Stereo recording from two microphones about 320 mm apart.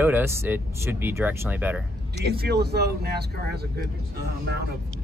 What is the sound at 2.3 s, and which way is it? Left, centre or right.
Speech, right.